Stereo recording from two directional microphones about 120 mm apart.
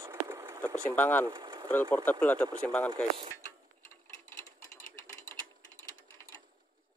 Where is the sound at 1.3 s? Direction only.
35° right (ahead or behind).